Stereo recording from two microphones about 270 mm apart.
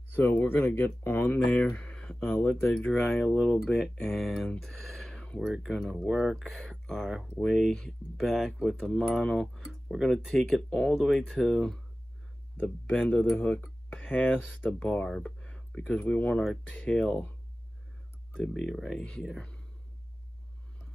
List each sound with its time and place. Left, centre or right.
0.1 s speech: centre
18.3 s speech: centre